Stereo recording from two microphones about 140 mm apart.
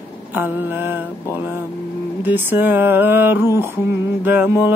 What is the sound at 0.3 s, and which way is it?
Speech, 15° right (ahead or behind).